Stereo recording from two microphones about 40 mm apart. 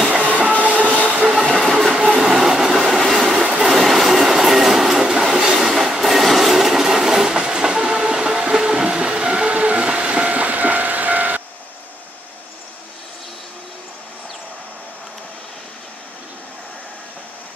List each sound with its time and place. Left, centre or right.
0.2 s train: right
1.5 s train: centre
2.1 s train: centre
9.5 s train: right
9.9 s vehicle: right